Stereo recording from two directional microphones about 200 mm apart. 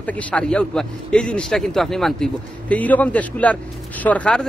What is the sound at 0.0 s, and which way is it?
A man's voice, 5° left (ahead or behind).